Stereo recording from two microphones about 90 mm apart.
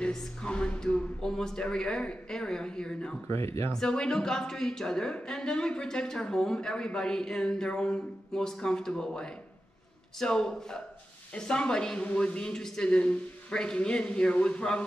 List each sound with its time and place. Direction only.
0.0 s speech: 10° left (ahead or behind)
3.3 s speech: 30° left (ahead or behind)
3.7 s speech: 5° left (ahead or behind)